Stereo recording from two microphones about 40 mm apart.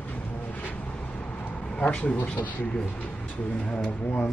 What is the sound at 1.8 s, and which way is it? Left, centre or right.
Speech, left.